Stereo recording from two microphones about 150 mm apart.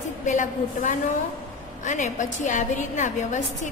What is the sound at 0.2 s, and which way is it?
A woman's voice, 55° left (ahead or behind).